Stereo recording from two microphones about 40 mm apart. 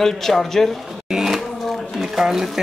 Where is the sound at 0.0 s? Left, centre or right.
Centre.